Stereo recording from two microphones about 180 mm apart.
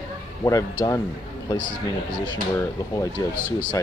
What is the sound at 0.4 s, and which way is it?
Speech, 20° left (ahead or behind).